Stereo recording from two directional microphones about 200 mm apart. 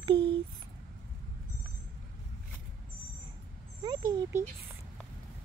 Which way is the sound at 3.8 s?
20° right (ahead or behind).